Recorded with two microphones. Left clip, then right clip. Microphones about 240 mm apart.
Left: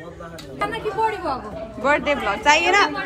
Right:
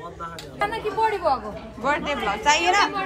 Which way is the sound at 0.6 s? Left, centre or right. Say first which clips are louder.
Left 1 dB; right.